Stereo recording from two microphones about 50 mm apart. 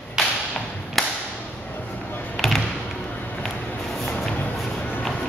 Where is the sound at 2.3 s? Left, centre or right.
Centre.